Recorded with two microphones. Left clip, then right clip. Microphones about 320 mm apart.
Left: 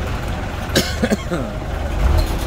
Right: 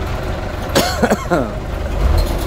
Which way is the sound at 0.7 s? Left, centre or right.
Centre.